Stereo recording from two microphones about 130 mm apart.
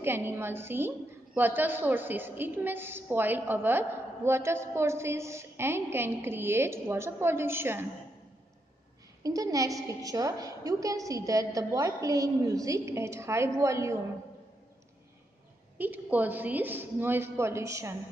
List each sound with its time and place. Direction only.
0.0 s a woman's voice: 15° right (ahead or behind)
9.2 s a woman's voice: 25° right (ahead or behind)
15.8 s a woman's voice: 15° right (ahead or behind)